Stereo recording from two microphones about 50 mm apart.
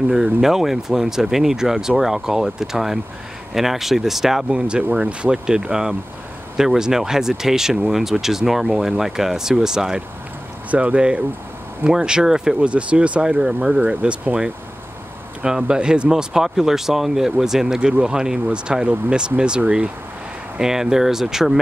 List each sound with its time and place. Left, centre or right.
0.1 s speech: centre
10.7 s speech: right
12.6 s speech: right
15.4 s speech: centre
20.5 s speech: centre